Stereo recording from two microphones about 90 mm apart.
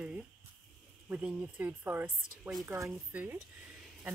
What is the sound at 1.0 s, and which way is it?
Speech, 15° right (ahead or behind).